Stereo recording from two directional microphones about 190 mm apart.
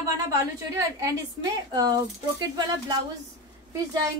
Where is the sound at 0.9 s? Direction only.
20° right (ahead or behind).